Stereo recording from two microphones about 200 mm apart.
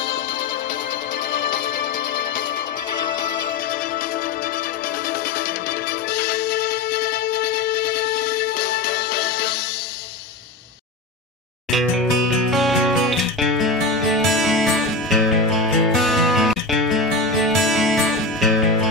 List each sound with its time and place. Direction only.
6.0 s music: 50° left (ahead or behind)
12.4 s music: centre (ahead or behind)